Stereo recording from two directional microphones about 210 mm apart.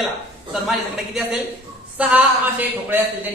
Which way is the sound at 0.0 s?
Centre (ahead or behind).